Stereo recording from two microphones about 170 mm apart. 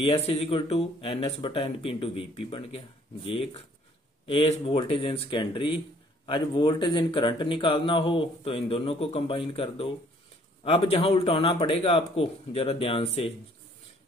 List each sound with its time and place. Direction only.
0.0 s speech: 35° left (ahead or behind)